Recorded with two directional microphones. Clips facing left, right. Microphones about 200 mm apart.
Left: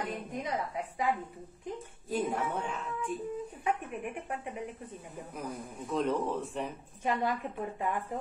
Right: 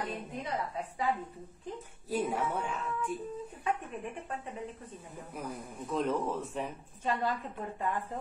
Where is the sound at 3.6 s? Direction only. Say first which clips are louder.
Left 1 dB; 15° left (ahead or behind).